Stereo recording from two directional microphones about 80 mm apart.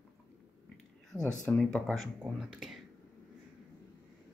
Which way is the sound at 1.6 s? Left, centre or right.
Centre.